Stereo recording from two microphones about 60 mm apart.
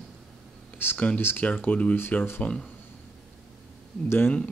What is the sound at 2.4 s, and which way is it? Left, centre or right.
Speech, centre.